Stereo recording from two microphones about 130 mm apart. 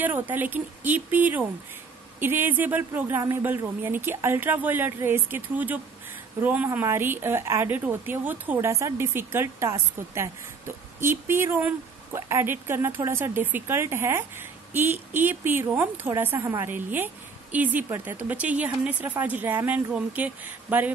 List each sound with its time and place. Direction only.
0.0 s speech: 15° right (ahead or behind)